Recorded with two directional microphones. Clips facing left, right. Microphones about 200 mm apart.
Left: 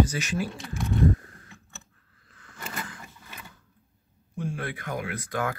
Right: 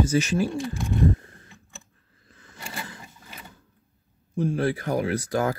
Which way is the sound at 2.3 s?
25° right (ahead or behind).